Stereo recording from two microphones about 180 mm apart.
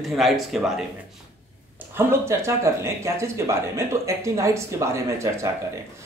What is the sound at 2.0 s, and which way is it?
Speech, 15° right (ahead or behind).